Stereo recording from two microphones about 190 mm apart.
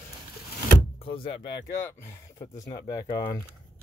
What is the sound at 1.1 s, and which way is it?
Speech, 60° left (ahead or behind).